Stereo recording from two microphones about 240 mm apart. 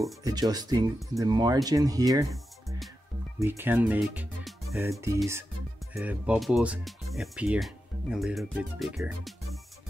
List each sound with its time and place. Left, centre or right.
0.2 s speech: centre
3.3 s speech: centre